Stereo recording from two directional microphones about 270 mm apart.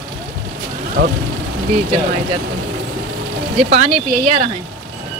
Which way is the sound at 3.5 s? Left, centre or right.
Right.